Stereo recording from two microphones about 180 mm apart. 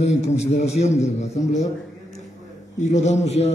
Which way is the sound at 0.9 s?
15° left (ahead or behind).